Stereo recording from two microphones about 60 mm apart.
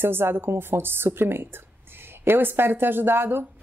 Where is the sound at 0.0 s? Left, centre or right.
Right.